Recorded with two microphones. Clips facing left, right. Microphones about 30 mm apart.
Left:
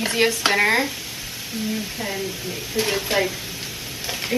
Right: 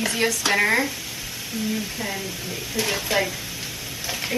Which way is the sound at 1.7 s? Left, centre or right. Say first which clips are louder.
Left 1 dB; centre.